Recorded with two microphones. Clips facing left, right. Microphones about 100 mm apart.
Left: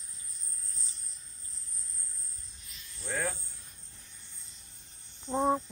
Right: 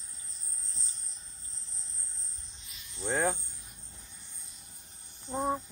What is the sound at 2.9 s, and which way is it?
Speech, 25° right (ahead or behind).